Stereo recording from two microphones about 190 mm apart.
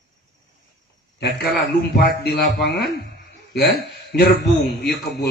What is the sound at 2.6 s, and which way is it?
A man's voice, 55° left (ahead or behind).